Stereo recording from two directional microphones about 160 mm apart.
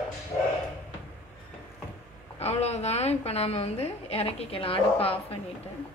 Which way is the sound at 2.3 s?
40° left (ahead or behind).